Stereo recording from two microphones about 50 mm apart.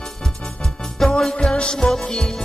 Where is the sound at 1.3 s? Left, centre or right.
Centre.